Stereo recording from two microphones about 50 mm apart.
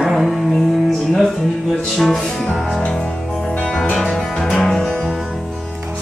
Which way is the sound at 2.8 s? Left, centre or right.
Centre.